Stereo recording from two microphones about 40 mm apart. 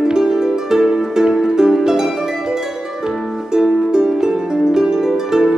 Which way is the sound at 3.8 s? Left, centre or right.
Centre.